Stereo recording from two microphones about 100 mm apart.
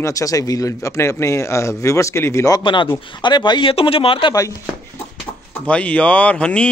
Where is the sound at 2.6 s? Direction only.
50° left (ahead or behind).